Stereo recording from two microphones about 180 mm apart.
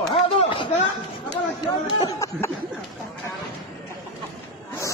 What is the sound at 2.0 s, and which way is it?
Speech, 20° left (ahead or behind).